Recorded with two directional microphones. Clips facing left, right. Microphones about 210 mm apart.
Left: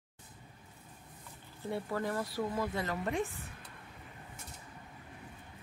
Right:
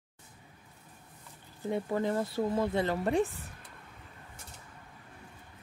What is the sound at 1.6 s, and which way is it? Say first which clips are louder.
Speech: right 5 dB; 20° right (ahead or behind).